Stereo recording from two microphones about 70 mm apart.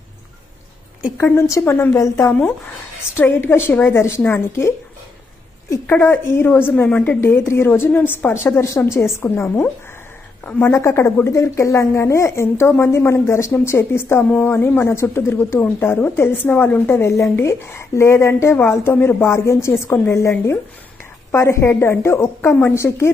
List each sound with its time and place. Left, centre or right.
1.1 s a woman's voice: left
5.9 s a woman's voice: left
6.7 s a woman's voice: centre
7.2 s a woman's voice: left
10.7 s a woman's voice: left
15.6 s a woman's voice: left
17.1 s a woman's voice: left